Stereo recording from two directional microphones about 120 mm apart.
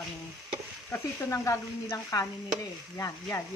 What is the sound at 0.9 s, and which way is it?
Speech, 25° left (ahead or behind).